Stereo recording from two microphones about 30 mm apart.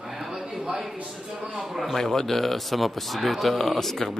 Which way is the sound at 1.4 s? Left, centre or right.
Right.